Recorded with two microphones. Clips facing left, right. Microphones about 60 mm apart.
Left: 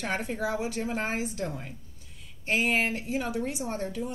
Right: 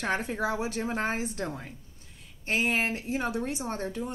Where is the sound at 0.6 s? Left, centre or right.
Right.